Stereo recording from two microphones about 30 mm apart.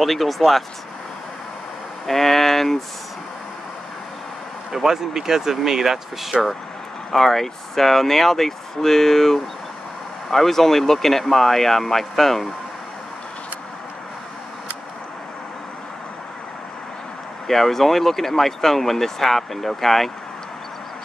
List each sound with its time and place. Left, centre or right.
0.0 s speech: centre
2.0 s speech: centre
4.8 s speech: centre
7.1 s speech: centre
17.5 s speech: centre